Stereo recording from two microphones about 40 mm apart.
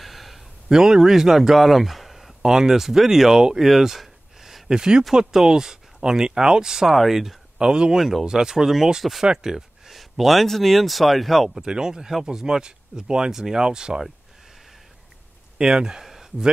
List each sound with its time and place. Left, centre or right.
0.0 s a sound: centre
0.7 s speech: centre
7.5 s speech: right
8.0 s speech: centre
8.3 s speech: centre
9.9 s speech: centre
11.5 s speech: centre
15.5 s a sound: centre